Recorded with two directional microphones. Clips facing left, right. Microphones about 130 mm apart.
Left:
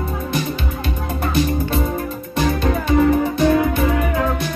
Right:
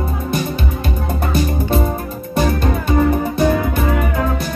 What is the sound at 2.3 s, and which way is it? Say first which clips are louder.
Music: right 2 dB; 45° right (ahead or behind).